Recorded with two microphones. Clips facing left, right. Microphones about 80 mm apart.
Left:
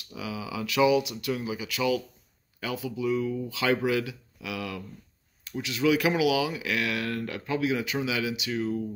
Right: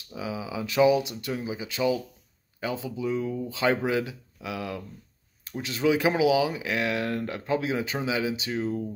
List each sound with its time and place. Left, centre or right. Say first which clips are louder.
0.1 s speech: right 2 dB; right